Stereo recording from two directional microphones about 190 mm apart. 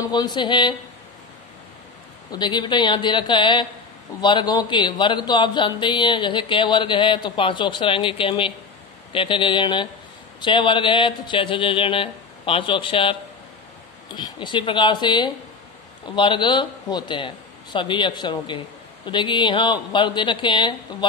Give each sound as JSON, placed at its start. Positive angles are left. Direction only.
{"t": 0.1, "sound": "a man's voice", "side_deg": 20}
{"t": 2.3, "sound": "a man's voice", "side_deg": 25}